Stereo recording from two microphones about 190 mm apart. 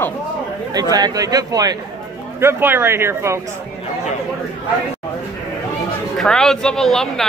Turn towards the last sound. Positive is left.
turn(degrees=0)  # may be behind; listen again after turning